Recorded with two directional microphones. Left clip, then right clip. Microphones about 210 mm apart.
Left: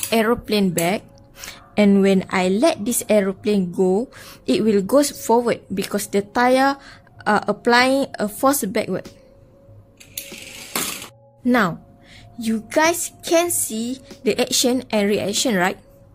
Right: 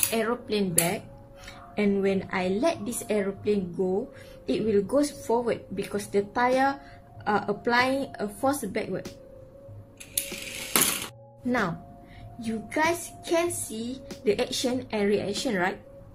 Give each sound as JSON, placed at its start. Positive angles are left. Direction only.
{"t": 0.1, "sound": "a woman's voice", "side_deg": 45}
{"t": 10.1, "sound": "coin", "side_deg": -5}
{"t": 11.4, "sound": "speech", "side_deg": 50}